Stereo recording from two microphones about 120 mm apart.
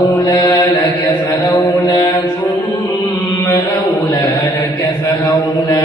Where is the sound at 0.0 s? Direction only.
35° left (ahead or behind).